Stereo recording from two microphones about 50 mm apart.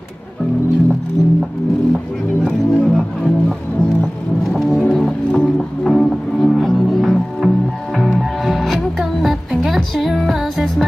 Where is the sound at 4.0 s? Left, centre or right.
Centre.